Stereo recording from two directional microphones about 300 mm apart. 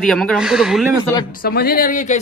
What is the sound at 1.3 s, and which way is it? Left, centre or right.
Speech, left.